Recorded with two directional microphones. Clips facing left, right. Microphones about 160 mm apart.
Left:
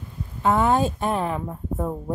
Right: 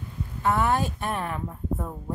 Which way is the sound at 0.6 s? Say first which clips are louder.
Left 4 dB; 25° left (ahead or behind).